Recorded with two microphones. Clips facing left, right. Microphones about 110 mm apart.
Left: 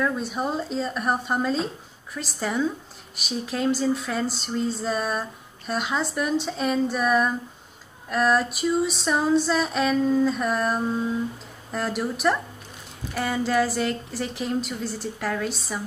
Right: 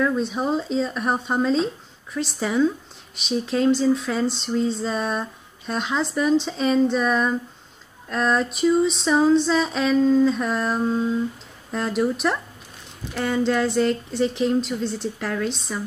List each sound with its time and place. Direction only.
0.0 s female singing: centre (ahead or behind)